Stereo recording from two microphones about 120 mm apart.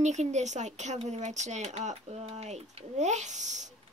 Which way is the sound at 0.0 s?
75° right (ahead or behind).